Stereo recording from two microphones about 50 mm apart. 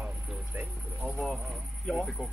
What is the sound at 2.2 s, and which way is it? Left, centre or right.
Speech, right.